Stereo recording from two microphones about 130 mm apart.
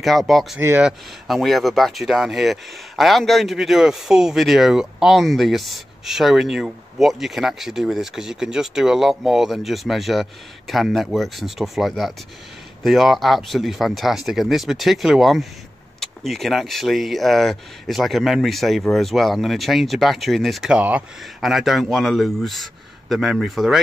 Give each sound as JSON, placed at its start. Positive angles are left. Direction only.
{"t": 0.0, "sound": "speech", "side_deg": 0}
{"t": 0.6, "sound": "speech", "side_deg": -15}
{"t": 0.8, "sound": "speech", "side_deg": 0}